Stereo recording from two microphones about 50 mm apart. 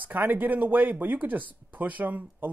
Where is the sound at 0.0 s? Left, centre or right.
Right.